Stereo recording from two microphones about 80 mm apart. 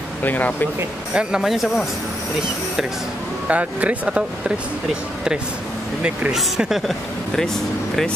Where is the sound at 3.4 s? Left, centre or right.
Centre.